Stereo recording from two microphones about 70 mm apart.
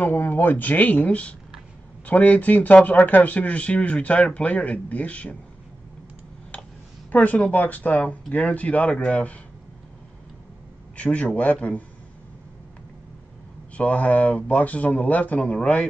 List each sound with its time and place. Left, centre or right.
0.0 s speech: left
7.1 s speech: left
11.0 s speech: centre
13.7 s speech: left